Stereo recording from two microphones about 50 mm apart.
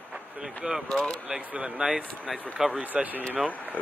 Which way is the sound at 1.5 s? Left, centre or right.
Centre.